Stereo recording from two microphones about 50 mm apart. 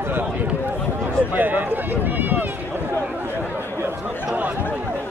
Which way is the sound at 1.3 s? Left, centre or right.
Right.